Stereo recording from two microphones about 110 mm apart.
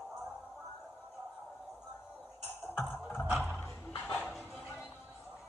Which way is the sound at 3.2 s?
15° right (ahead or behind).